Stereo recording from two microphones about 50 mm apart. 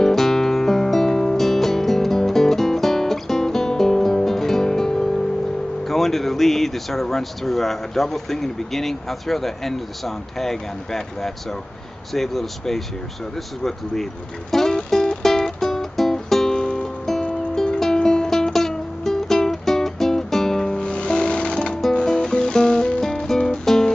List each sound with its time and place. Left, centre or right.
0.0 s music: centre
5.9 s speech: centre
14.5 s music: centre
20.8 s music: left